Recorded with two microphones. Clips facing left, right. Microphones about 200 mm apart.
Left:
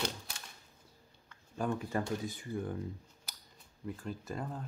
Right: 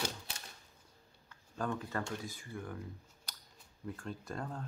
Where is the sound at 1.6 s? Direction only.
15° left (ahead or behind).